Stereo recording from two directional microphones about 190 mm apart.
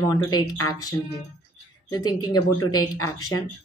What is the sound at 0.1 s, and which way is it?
Speech, 20° left (ahead or behind).